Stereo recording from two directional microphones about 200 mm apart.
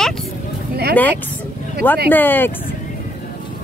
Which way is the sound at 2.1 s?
10° left (ahead or behind).